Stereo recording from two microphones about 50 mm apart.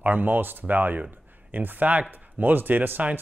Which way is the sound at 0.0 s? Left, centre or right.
Right.